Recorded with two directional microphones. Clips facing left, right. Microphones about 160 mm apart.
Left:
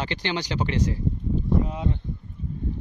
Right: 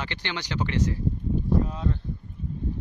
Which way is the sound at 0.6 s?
20° left (ahead or behind).